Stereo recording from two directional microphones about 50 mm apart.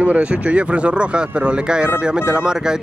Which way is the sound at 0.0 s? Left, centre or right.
Right.